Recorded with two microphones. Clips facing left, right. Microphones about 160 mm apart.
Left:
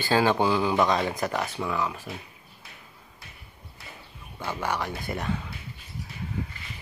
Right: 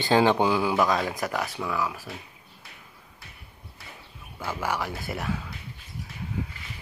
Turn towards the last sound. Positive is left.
turn(degrees=-5)  # may be behind; listen again after turning